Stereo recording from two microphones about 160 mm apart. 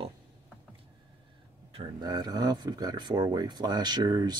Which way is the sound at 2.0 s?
25° right (ahead or behind).